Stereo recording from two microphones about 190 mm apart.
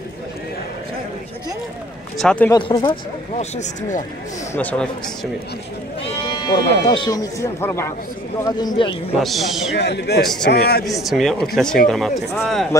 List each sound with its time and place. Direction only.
2.1 s speech: 5° left (ahead or behind)
2.5 s speech: 25° left (ahead or behind)
4.6 s a man's voice: 10° left (ahead or behind)
6.4 s speech: 25° left (ahead or behind)
9.2 s speech: centre (ahead or behind)
9.8 s a man's voice: 60° left (ahead or behind)
10.9 s speech: centre (ahead or behind)